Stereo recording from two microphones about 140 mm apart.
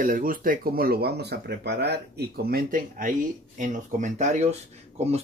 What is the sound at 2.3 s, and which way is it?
Speech, 90° right.